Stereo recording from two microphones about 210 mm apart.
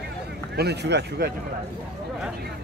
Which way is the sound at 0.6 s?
50° right (ahead or behind).